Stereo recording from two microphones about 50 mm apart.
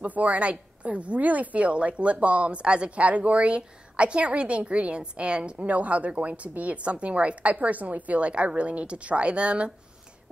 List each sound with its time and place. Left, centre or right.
0.0 s a woman's voice: right